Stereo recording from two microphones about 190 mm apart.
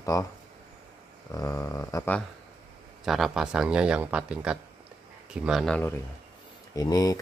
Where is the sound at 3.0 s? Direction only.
Centre (ahead or behind).